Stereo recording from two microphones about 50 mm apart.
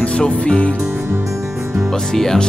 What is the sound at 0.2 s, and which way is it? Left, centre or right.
Music, centre.